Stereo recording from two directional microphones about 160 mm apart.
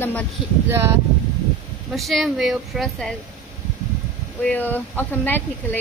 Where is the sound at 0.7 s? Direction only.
15° right (ahead or behind).